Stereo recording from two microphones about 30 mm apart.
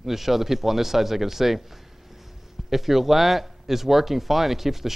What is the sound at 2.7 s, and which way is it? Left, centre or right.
Speech, centre.